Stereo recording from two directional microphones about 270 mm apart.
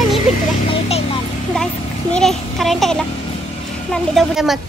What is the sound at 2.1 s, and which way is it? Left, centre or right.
A woman's voice, centre.